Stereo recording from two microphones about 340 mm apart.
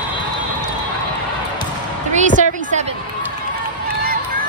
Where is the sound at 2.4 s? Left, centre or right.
Right.